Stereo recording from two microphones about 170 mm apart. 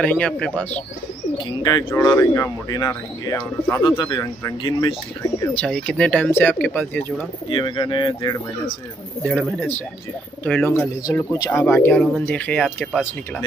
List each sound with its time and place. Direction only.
0.0 s speech: 5° left (ahead or behind)
1.6 s speech: 25° left (ahead or behind)
4.0 s speech: 25° left (ahead or behind)
7.4 s speech: 30° left (ahead or behind)
9.2 s speech: centre (ahead or behind)